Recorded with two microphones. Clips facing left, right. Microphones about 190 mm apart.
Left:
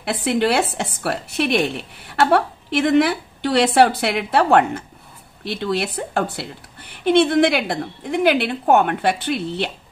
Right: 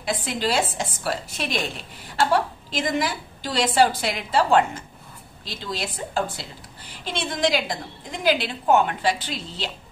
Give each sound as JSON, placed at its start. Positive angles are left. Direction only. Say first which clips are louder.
{"t": 0.0, "sound": "speech", "louder": "left 7 dB", "side_deg": 65}